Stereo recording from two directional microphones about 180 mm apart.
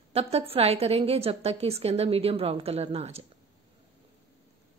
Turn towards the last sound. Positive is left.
turn(degrees=-35)  # may be behind; listen again after turning